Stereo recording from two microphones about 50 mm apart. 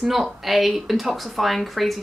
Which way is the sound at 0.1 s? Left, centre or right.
Centre.